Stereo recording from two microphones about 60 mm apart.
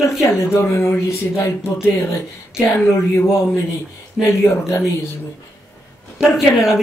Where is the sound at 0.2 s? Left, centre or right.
Left.